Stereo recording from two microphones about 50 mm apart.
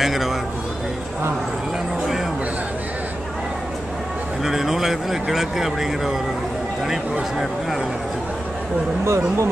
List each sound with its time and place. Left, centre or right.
0.0 s a sound: centre
4.5 s speech: centre
9.0 s speech: right